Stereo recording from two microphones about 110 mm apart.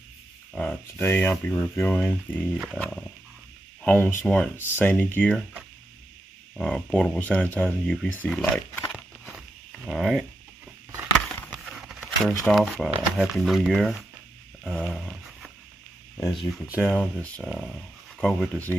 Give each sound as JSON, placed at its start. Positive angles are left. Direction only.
{"t": 0.5, "sound": "a sound", "side_deg": 5}
{"t": 0.9, "sound": "speech", "side_deg": 20}
{"t": 3.8, "sound": "speech", "side_deg": 15}
{"t": 6.5, "sound": "speech", "side_deg": 5}
{"t": 8.9, "sound": "a sound", "side_deg": -10}
{"t": 9.8, "sound": "speech", "side_deg": 0}
{"t": 11.3, "sound": "a sound", "side_deg": 10}
{"t": 11.6, "sound": "a sound", "side_deg": -5}
{"t": 12.4, "sound": "speech", "side_deg": 0}
{"t": 14.6, "sound": "dog", "side_deg": 5}
{"t": 16.3, "sound": "speech", "side_deg": 5}
{"t": 16.6, "sound": "speech", "side_deg": -15}
{"t": 16.9, "sound": "speech", "side_deg": 10}
{"t": 17.4, "sound": "speech", "side_deg": 0}